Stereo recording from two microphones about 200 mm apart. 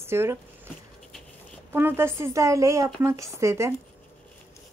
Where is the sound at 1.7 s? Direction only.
10° right (ahead or behind).